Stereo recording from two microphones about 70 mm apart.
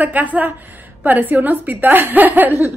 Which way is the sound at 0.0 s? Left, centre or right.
Right.